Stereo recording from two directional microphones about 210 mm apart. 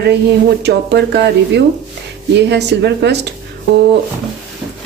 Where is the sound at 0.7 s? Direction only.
55° right (ahead or behind).